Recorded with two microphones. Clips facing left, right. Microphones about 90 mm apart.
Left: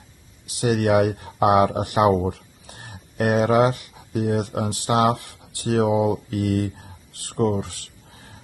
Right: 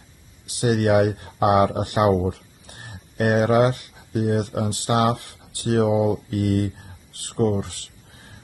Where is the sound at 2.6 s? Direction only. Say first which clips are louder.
Left 2 dB; 45° left (ahead or behind).